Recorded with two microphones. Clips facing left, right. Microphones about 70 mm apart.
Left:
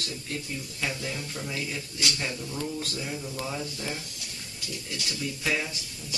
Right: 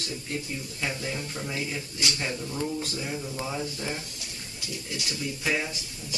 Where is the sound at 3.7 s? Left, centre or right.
Right.